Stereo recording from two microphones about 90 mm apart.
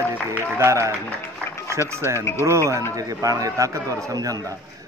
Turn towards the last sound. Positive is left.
turn(degrees=-40)  # may be behind; listen again after turning